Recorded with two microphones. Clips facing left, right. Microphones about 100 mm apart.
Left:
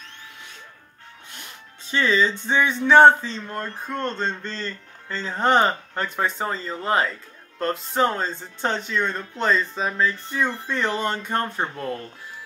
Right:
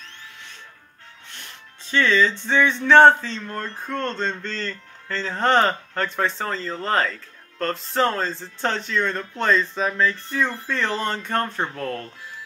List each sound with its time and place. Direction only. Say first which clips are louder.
1.9 s speech: right 1 dB; 10° left (ahead or behind)